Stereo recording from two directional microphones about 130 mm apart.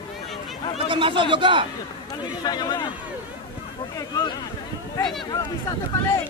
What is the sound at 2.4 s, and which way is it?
Speech, 35° left (ahead or behind).